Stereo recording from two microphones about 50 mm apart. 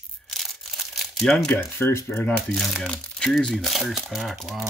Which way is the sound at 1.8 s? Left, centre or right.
Left.